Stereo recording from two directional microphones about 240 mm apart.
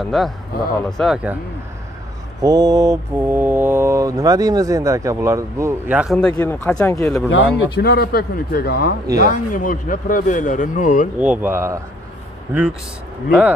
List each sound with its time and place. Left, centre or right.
0.0 s speech: centre
2.4 s mantra: centre
6.3 s speech: centre
7.2 s speech: left
9.0 s speech: right
9.3 s speech: left
11.1 s mantra: centre